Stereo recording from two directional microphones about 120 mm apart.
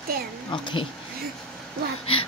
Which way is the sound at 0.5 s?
40° left (ahead or behind).